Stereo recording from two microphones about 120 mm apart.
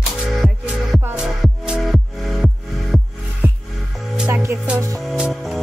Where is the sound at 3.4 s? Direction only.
20° right (ahead or behind).